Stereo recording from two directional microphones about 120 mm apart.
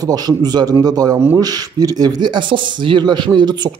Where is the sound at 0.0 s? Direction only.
35° right (ahead or behind).